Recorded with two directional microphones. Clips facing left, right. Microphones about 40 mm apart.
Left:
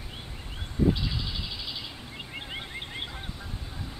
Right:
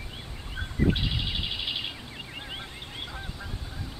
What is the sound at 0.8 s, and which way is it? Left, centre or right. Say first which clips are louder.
Bird: even; right.